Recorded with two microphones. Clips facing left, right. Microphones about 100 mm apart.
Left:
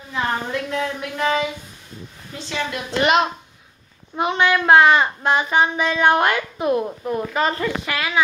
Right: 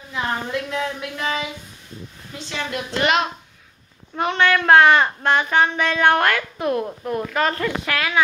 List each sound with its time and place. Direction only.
0.1 s a woman's voice: 5° right (ahead or behind)
1.1 s speech: 35° left (ahead or behind)
2.7 s a woman's voice: 20° left (ahead or behind); by 8.2 s 5° left (ahead or behind)